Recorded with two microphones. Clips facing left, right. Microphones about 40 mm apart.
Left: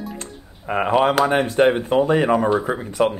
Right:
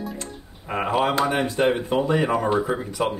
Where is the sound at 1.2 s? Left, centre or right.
Left.